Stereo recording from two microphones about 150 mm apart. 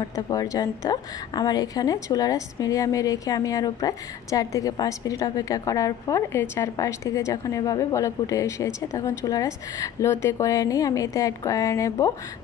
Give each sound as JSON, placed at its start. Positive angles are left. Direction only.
{"t": 0.0, "sound": "a woman's voice", "side_deg": 25}